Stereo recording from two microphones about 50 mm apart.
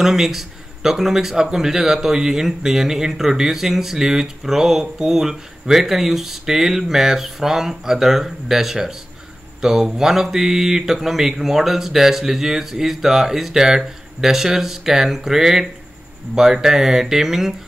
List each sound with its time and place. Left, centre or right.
0.0 s speech: centre